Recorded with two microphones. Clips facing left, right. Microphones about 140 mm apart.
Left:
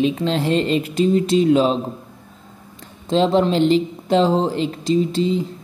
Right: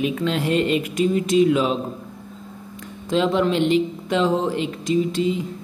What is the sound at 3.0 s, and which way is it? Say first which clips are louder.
Speech: left 3 dB; 30° left (ahead or behind).